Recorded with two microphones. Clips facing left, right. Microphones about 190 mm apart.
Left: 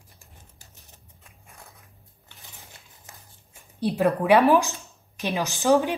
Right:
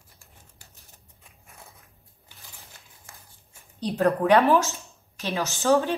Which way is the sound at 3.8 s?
10° left (ahead or behind).